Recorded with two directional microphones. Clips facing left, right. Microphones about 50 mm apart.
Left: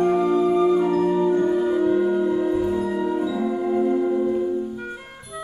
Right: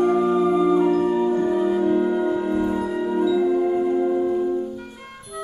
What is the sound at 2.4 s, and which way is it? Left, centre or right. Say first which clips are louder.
Music: left 1 dB; centre.